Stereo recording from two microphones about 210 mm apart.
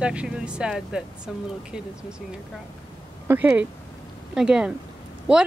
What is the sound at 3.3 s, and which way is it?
Speech, 10° right (ahead or behind).